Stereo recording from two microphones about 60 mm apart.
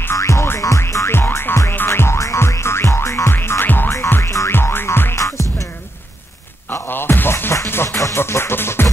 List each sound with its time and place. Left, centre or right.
0.1 s music: left
3.3 s music: left
4.2 s music: left
4.5 s music: left
5.1 s music: left
6.7 s music: left